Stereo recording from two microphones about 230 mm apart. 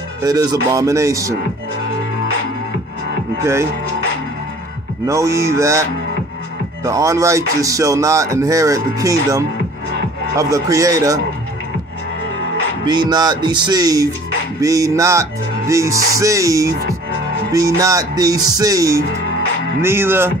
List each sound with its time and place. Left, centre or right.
0.2 s music: centre
5.0 s music: centre
12.8 s speech: centre
14.6 s music: centre